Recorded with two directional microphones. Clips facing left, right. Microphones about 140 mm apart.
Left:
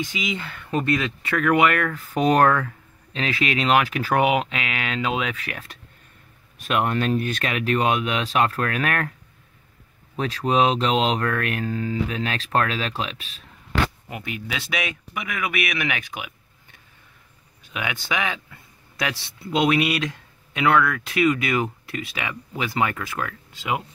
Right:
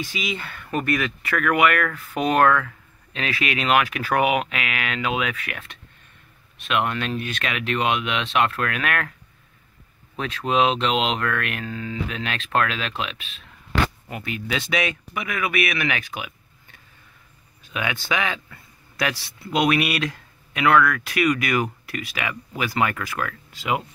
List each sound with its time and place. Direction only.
0.0 s speech: 15° left (ahead or behind); by 9.1 s 30° left (ahead or behind)
10.1 s speech: 35° left (ahead or behind)
14.0 s speech: 15° left (ahead or behind)
17.7 s speech: 15° left (ahead or behind)